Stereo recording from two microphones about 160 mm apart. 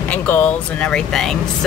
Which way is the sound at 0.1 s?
10° left (ahead or behind).